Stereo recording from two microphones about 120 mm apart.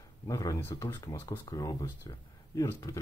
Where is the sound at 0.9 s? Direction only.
35° left (ahead or behind).